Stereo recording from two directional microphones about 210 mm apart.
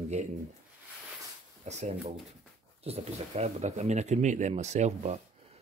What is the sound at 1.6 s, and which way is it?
Speech, 35° right (ahead or behind).